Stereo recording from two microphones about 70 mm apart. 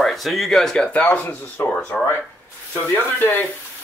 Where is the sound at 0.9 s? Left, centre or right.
Left.